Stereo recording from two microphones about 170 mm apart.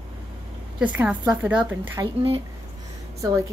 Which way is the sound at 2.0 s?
20° right (ahead or behind).